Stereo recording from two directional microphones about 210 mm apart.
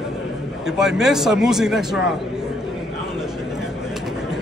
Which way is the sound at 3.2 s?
Centre (ahead or behind).